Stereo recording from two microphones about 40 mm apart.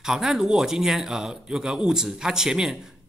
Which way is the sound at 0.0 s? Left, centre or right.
Centre.